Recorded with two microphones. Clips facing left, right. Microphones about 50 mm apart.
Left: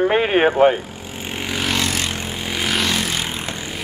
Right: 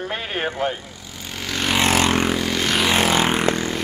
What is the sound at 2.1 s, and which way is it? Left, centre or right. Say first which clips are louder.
Vehicle: right 8 dB; right.